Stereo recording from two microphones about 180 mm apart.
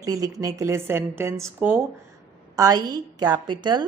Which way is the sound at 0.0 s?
20° right (ahead or behind).